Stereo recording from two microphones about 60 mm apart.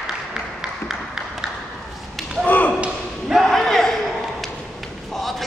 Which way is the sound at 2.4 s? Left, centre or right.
Left.